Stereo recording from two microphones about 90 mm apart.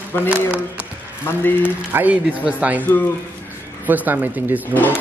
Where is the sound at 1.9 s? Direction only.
20° right (ahead or behind).